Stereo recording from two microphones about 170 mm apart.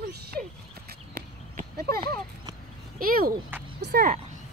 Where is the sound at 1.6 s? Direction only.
60° right (ahead or behind).